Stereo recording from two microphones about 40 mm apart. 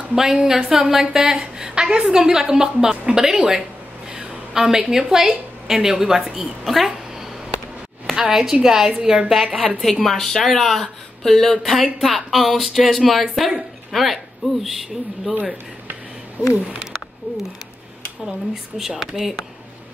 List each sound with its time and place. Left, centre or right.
0.1 s a woman's voice: centre
8.1 s a woman's voice: centre
9.7 s a woman's voice: centre
16.4 s a sound: right
18.5 s a woman's voice: centre